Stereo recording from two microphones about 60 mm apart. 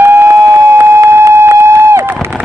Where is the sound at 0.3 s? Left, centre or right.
Right.